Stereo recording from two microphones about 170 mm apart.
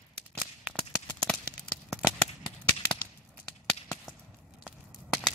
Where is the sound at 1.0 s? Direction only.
5° left (ahead or behind).